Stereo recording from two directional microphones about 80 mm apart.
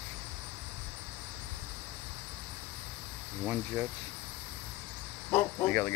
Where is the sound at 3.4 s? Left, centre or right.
Centre.